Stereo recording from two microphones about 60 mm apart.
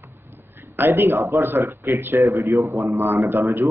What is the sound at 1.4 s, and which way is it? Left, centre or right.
Speech, right.